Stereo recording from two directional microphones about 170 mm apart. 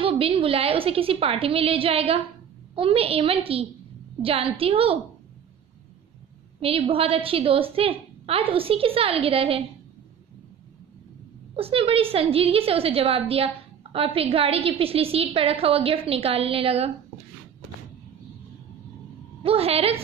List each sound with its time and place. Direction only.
0.0 s a woman's voice: 35° right (ahead or behind)
6.6 s a woman's voice: 35° right (ahead or behind)
11.5 s a woman's voice: 35° right (ahead or behind)
19.4 s a woman's voice: 35° right (ahead or behind)